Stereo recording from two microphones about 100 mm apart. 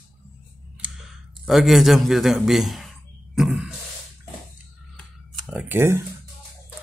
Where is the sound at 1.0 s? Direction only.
Centre (ahead or behind).